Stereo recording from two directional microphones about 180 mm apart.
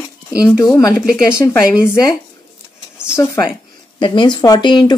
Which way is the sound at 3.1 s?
15° left (ahead or behind).